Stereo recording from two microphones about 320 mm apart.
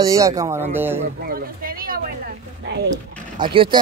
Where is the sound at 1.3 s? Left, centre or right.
Right.